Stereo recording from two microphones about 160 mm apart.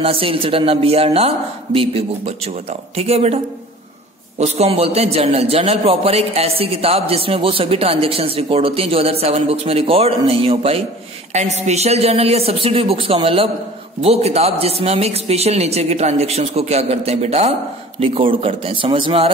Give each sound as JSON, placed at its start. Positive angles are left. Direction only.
{"t": 0.0, "sound": "a man's voice", "side_deg": -35}
{"t": 4.4, "sound": "a man's voice", "side_deg": -40}